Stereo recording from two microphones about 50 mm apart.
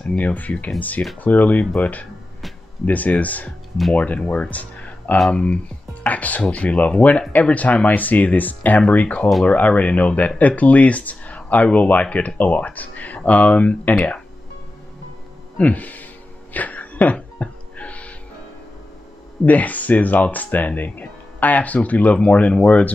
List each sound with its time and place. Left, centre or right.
0.2 s speech: left
4.3 s music: left
5.3 s speech: left
6.0 s speech: left
15.5 s music: left
19.4 s speech: left